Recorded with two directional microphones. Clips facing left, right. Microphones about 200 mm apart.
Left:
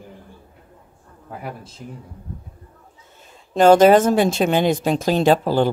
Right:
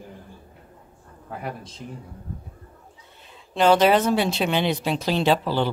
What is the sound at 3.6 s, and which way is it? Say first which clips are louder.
Speech: left 6 dB; 45° left (ahead or behind).